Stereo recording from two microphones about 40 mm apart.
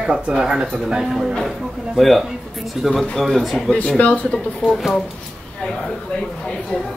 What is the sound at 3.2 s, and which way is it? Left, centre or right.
Speech, centre.